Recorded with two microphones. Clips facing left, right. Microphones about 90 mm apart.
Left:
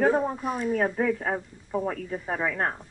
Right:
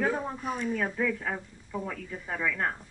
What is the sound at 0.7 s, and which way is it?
A woman's voice, 40° left (ahead or behind).